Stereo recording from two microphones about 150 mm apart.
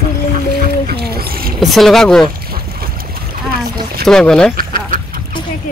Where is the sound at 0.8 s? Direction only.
80° right.